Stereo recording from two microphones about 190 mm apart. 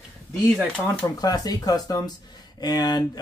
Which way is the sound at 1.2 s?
20° left (ahead or behind).